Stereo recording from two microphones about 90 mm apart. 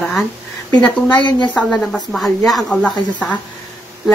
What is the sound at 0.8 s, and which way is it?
Speech, 15° left (ahead or behind).